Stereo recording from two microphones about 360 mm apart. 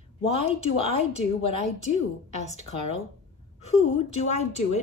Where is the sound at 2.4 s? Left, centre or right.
Centre.